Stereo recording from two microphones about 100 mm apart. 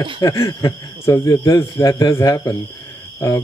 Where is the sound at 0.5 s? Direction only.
35° left (ahead or behind).